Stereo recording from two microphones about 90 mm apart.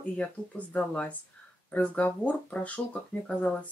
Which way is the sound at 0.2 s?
10° left (ahead or behind).